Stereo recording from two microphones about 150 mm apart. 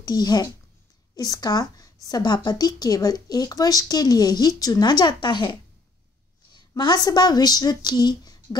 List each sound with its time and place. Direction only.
0.0 s speech: 25° left (ahead or behind)